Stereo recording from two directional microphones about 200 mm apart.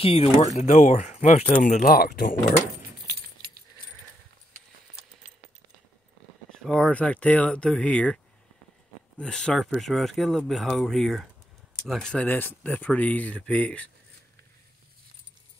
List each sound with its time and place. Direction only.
0.0 s speech: 30° left (ahead or behind); by 2.3 s 45° left (ahead or behind)
3.1 s keys jangling: 50° right (ahead or behind)
6.5 s speech: 5° left (ahead or behind)
9.2 s speech: 5° left (ahead or behind)